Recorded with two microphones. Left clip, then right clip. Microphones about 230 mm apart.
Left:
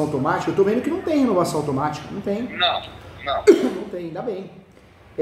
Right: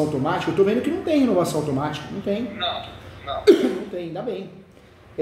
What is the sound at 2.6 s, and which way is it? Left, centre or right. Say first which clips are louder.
Speech: left 8 dB; left.